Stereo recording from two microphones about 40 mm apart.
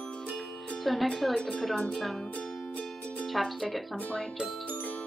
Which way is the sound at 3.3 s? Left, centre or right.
Centre.